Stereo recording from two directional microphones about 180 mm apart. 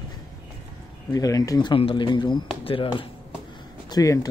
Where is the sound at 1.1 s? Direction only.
20° left (ahead or behind).